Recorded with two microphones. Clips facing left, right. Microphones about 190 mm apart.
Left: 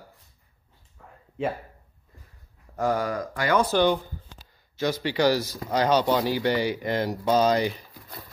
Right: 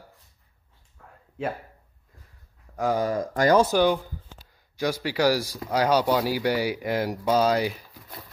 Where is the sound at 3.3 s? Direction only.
40° right (ahead or behind).